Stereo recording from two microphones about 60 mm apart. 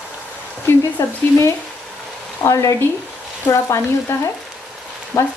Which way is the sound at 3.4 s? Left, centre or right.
Left.